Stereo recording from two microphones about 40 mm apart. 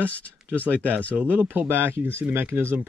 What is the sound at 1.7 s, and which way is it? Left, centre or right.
Speech, right.